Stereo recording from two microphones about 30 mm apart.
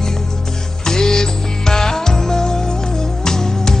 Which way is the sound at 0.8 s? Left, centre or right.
Left.